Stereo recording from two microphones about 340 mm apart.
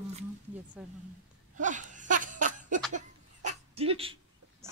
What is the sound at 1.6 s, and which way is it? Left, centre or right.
Laughter, right.